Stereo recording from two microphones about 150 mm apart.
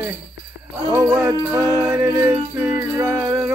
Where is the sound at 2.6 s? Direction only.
25° right (ahead or behind).